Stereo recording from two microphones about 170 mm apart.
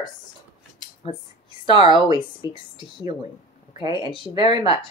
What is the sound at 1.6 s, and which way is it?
Speech, 30° left (ahead or behind).